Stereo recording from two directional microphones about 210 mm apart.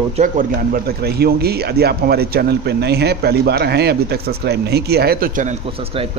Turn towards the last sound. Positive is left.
turn(degrees=-35)  # may be behind; listen again after turning